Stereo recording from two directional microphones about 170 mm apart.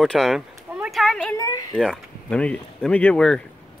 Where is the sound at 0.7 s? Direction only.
5° right (ahead or behind).